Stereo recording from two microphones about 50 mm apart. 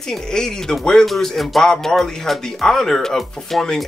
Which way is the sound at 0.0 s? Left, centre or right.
Centre.